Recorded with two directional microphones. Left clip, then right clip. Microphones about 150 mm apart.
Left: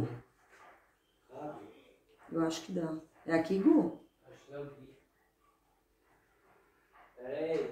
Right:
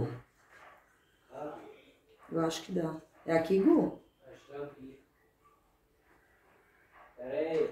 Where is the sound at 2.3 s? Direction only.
35° right (ahead or behind).